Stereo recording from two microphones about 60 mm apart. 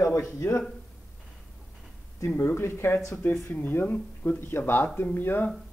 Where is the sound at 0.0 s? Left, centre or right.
Left.